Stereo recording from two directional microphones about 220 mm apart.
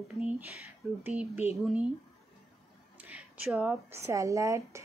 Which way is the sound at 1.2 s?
10° right (ahead or behind).